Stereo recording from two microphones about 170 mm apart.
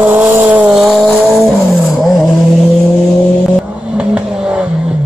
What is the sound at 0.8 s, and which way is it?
Vehicle, centre (ahead or behind).